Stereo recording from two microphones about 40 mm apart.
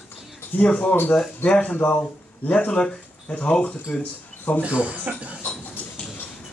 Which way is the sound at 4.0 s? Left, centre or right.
Left.